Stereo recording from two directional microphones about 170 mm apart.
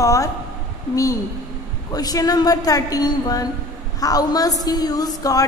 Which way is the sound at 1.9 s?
20° left (ahead or behind).